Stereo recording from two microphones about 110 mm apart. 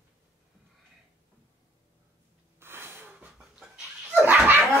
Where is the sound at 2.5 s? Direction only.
20° right (ahead or behind).